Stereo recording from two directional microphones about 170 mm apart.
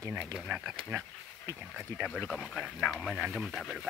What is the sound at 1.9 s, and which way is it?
Speech, 5° right (ahead or behind).